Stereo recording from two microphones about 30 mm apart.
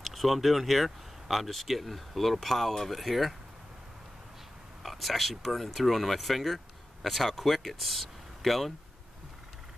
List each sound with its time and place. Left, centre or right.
0.0 s speech: centre
4.8 s speech: centre